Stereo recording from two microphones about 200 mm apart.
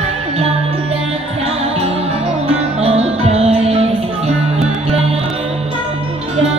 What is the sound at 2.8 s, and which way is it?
Music, 30° right (ahead or behind).